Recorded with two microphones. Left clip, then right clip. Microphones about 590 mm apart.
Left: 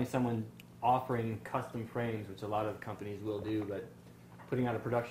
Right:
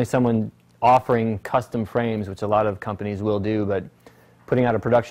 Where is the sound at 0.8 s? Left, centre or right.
Right.